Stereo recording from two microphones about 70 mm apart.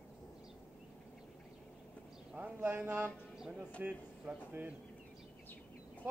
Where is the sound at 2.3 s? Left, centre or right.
Right.